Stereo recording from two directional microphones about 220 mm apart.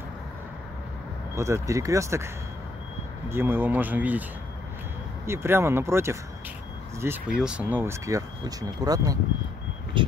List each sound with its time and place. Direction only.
1.3 s speech: 15° right (ahead or behind)
5.2 s speech: 10° right (ahead or behind)